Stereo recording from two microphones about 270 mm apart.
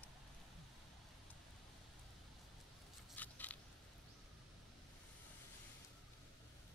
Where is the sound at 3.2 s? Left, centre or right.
Centre.